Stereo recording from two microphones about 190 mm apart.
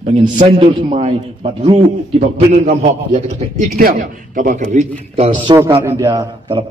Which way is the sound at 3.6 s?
50° right (ahead or behind).